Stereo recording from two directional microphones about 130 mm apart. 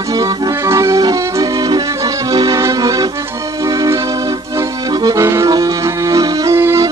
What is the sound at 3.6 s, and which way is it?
Music, 30° right (ahead or behind).